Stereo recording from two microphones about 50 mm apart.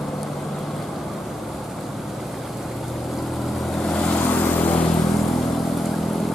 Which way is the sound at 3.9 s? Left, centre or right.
Centre.